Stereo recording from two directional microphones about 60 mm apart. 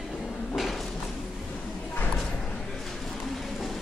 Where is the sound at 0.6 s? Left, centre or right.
Centre.